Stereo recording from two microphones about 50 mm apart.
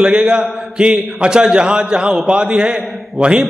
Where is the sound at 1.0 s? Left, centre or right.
Centre.